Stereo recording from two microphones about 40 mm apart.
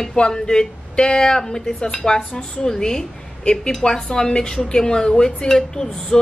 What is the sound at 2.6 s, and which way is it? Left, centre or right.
Speech, centre.